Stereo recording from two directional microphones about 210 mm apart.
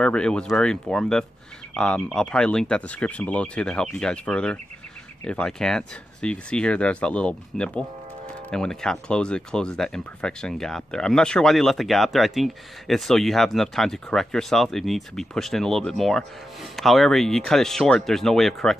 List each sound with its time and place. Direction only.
0.0 s speech: 5° left (ahead or behind)